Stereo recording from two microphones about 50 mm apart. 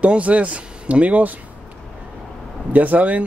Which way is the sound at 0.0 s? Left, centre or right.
Right.